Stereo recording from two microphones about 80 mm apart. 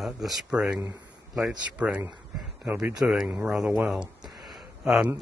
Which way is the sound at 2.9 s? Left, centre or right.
Centre.